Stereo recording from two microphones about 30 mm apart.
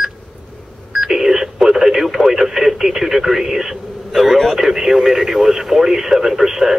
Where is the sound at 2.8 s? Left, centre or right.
Centre.